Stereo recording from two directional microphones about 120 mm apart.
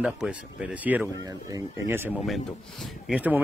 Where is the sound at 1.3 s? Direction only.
30° right (ahead or behind).